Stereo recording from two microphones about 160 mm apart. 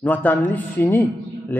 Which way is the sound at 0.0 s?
10° left (ahead or behind).